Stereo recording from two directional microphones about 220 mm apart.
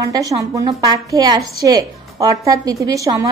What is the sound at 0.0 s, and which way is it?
A woman's voice, 15° right (ahead or behind).